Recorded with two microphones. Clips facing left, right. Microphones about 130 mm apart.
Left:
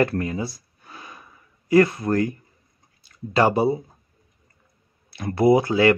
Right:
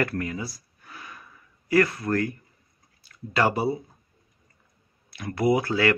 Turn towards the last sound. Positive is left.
turn(degrees=20)  # may be behind; listen again after turning